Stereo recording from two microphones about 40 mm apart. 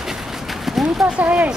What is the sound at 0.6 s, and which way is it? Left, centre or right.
Horse, centre.